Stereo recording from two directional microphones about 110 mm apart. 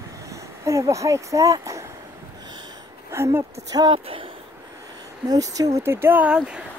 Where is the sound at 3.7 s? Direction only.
35° right (ahead or behind).